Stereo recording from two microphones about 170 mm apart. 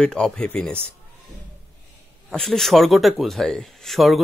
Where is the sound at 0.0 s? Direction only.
5° left (ahead or behind).